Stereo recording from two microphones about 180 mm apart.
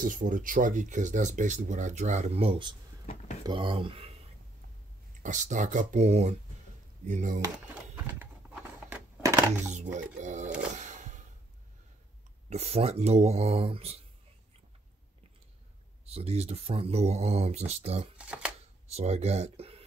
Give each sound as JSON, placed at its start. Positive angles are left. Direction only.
{"t": 0.0, "sound": "speech", "side_deg": -50}
{"t": 5.2, "sound": "speech", "side_deg": -45}
{"t": 8.8, "sound": "a sound", "side_deg": -15}
{"t": 9.9, "sound": "speech", "side_deg": -45}
{"t": 10.8, "sound": "a sound", "side_deg": -40}
{"t": 12.4, "sound": "speech", "side_deg": -35}
{"t": 16.1, "sound": "speech", "side_deg": -35}
{"t": 18.1, "sound": "speech", "side_deg": -5}
{"t": 18.9, "sound": "speech", "side_deg": -40}